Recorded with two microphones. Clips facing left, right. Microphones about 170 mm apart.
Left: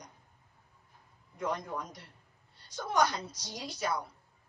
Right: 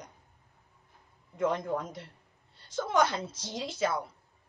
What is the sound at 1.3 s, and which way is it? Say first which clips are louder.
Speech: right 6 dB; 25° right (ahead or behind).